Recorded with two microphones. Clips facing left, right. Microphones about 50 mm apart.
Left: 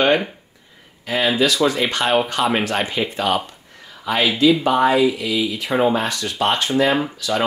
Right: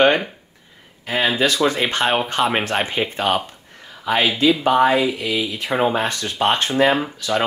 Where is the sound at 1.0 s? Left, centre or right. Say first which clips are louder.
Left 1 dB; right.